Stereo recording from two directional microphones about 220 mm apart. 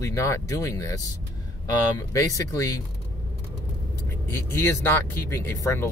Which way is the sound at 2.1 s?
15° left (ahead or behind).